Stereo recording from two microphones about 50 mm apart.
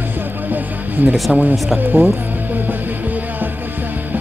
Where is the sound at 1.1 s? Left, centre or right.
Centre.